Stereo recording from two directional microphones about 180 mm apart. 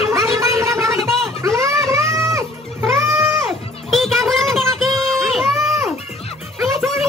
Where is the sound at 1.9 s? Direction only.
15° right (ahead or behind).